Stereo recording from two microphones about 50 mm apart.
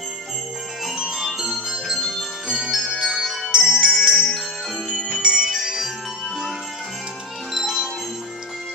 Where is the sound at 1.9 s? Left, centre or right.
Centre.